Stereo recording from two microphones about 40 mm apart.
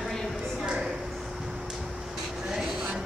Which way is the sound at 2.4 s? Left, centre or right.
Centre.